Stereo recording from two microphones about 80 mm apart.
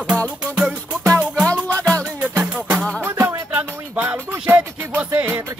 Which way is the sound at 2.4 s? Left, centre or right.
Centre.